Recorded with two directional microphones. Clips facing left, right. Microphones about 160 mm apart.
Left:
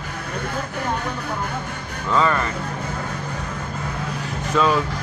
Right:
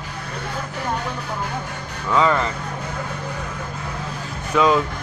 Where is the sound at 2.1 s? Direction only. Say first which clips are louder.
Right 1 dB; 15° right (ahead or behind).